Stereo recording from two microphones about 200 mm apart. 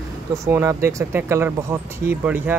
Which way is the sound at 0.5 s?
15° right (ahead or behind).